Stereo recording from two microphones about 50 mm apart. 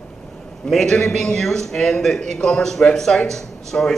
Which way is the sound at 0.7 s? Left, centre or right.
Centre.